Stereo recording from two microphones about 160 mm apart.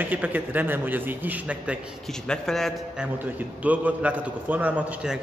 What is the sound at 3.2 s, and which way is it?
A man's voice, 10° right (ahead or behind).